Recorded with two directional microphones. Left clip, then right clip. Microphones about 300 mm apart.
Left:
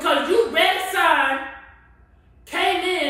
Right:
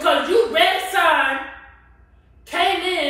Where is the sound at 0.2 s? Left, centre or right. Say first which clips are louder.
Right 2 dB; centre.